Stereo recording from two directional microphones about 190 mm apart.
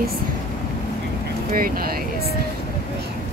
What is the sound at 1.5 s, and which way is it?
Speech, 50° right (ahead or behind).